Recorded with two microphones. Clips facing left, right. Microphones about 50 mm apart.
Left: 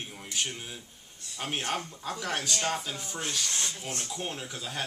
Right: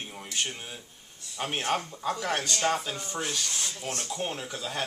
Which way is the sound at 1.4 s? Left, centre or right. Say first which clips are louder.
Right 3 dB; centre.